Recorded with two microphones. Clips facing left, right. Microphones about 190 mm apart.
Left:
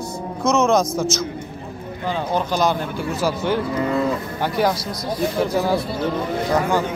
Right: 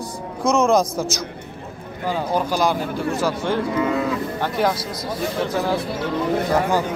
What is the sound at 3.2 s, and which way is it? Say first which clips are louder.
A man's voice: left 3 dB; 5° left (ahead or behind).